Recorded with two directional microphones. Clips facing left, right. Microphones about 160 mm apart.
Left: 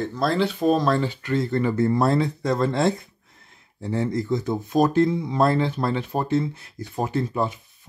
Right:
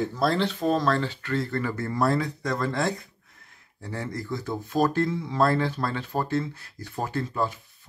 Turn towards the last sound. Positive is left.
turn(degrees=20)  # may be behind; listen again after turning